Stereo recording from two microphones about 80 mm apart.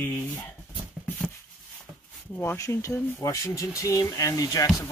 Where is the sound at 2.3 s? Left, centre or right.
Left.